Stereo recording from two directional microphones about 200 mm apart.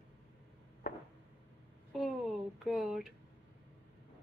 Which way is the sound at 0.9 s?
50° left (ahead or behind).